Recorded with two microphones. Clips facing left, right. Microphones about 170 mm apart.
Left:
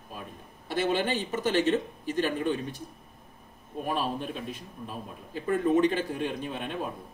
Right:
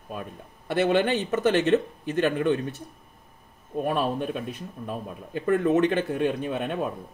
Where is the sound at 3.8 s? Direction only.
60° right (ahead or behind).